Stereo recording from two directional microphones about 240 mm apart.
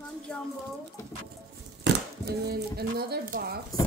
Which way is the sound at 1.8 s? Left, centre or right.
Right.